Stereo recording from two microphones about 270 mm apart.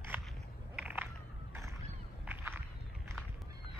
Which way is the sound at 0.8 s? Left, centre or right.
Centre.